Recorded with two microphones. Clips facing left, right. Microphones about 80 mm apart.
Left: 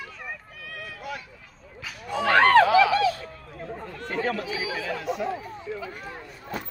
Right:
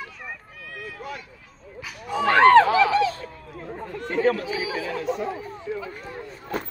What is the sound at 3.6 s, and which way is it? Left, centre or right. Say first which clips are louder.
Chatter: right 2 dB; right.